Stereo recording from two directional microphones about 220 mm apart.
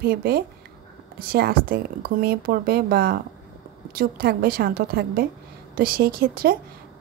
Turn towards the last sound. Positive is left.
turn(degrees=-40)  # may be behind; listen again after turning